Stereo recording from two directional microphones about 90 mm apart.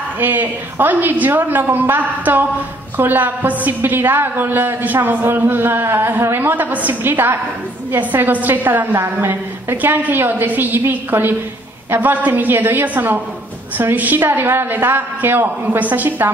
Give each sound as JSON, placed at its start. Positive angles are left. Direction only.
{"t": 0.2, "sound": "a woman's voice", "side_deg": -20}